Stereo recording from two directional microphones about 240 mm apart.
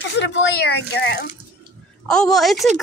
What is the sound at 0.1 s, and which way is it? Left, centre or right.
Speech, left.